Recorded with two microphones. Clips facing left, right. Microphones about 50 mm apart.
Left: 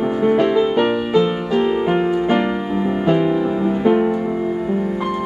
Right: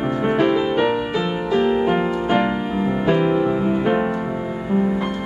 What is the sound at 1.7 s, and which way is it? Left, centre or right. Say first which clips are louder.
Music: left 1 dB; centre.